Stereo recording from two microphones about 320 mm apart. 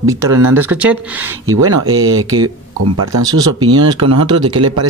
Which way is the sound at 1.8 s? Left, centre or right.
Right.